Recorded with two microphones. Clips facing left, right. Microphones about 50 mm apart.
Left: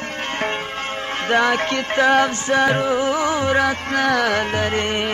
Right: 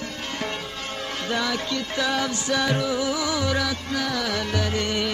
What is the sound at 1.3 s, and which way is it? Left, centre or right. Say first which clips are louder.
Music: left 9 dB; left.